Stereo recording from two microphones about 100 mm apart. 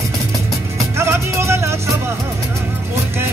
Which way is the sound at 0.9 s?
25° right (ahead or behind).